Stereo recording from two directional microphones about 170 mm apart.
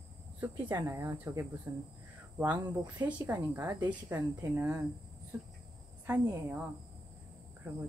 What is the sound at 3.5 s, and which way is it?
Speech, 20° right (ahead or behind).